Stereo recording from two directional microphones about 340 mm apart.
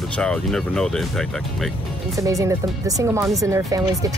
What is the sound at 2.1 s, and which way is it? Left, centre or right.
Speech, centre.